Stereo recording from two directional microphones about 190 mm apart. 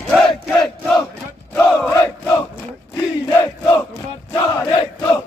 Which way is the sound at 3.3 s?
10° left (ahead or behind).